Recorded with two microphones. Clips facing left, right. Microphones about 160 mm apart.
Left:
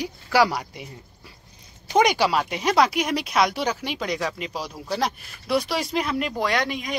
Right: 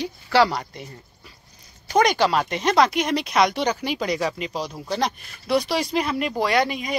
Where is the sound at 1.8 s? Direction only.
15° left (ahead or behind).